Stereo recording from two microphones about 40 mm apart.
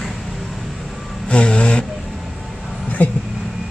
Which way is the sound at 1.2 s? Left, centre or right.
Left.